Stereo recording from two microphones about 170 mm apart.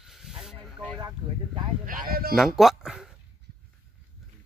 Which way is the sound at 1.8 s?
55° right (ahead or behind).